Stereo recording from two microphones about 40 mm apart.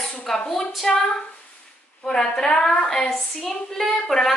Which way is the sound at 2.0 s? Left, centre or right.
Centre.